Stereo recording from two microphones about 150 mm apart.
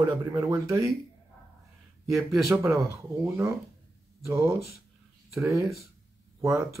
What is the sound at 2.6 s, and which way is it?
Speech, 20° right (ahead or behind).